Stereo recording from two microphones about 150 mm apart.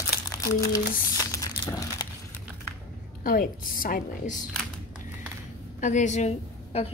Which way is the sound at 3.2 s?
70° left (ahead or behind).